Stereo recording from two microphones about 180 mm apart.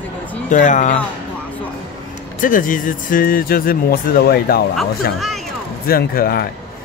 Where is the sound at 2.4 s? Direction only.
50° left (ahead or behind).